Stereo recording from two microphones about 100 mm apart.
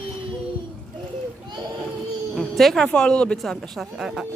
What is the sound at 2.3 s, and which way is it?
Speech, centre (ahead or behind).